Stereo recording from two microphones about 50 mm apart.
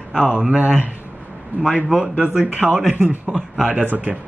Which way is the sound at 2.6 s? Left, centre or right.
Centre.